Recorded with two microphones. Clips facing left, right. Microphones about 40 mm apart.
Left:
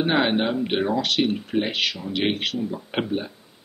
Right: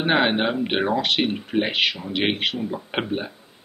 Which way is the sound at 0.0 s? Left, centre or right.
Right.